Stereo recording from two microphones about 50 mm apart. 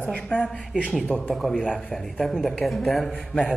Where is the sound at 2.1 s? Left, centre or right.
Centre.